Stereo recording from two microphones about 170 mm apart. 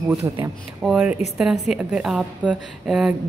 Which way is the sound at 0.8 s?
5° right (ahead or behind).